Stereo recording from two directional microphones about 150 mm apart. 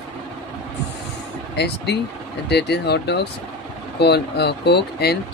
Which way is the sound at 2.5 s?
90° left.